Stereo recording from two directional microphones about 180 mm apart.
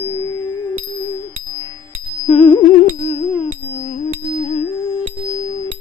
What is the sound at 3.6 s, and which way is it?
Music, 35° left (ahead or behind).